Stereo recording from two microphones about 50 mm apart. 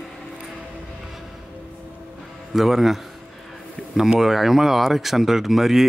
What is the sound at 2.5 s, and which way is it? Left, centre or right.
Speech, centre.